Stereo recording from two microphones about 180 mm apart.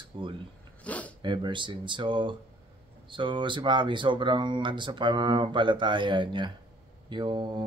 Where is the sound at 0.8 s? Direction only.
10° left (ahead or behind).